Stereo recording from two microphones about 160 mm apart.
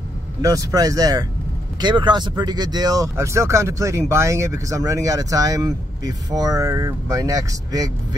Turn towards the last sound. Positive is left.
turn(degrees=-25)  # may be behind; listen again after turning